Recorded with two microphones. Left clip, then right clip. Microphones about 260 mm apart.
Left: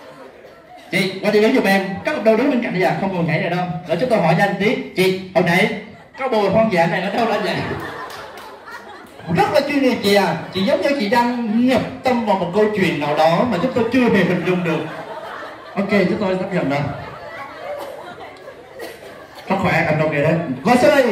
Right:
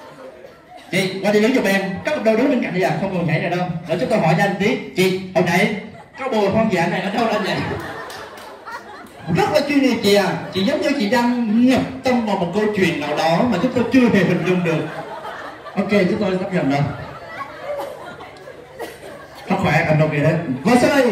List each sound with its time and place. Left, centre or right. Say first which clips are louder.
0.9 s a man's voice: left 1 dB; left
9.3 s a man's voice: left 1 dB; left
15.7 s a man's voice: even; centre
19.4 s a man's voice: left 1 dB; centre